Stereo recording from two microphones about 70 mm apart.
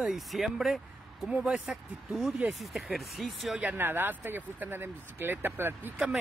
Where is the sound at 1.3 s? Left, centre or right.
Centre.